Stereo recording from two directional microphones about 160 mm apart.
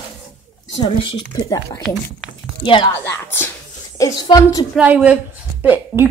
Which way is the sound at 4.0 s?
25° left (ahead or behind).